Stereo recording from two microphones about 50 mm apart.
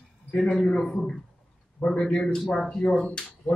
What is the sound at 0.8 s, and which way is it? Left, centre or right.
A man's voice, centre.